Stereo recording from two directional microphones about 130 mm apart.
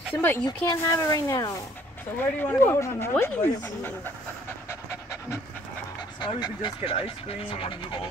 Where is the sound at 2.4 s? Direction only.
15° left (ahead or behind).